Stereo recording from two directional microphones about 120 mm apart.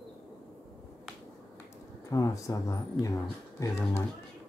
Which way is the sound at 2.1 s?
30° left (ahead or behind).